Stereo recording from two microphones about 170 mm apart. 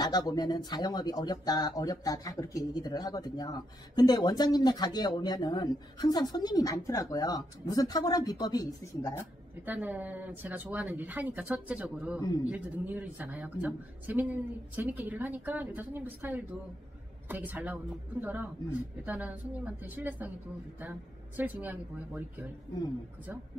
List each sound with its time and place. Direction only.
0.0 s speech: 25° left (ahead or behind)
9.7 s speech: 10° right (ahead or behind)
21.4 s speech: 10° right (ahead or behind)